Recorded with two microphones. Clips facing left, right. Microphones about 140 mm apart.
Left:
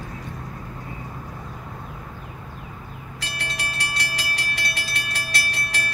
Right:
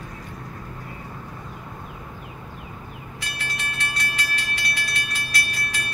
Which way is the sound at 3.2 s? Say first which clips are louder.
Left 2 dB; 80° left.